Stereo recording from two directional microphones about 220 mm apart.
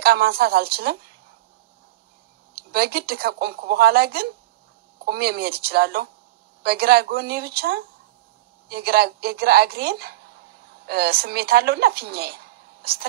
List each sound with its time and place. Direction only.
0.0 s speech: 45° right (ahead or behind)
2.5 s a woman's voice: 45° right (ahead or behind)